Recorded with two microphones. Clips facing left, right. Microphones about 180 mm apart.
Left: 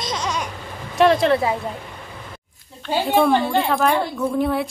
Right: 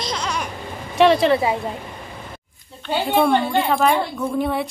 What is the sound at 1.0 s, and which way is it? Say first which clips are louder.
Speech: right 1 dB; centre (ahead or behind).